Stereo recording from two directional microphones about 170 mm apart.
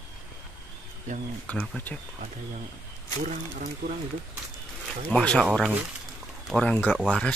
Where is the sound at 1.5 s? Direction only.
10° left (ahead or behind).